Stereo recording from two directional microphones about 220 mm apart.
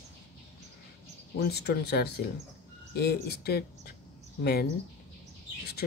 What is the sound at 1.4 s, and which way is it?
Speech, 50° left (ahead or behind).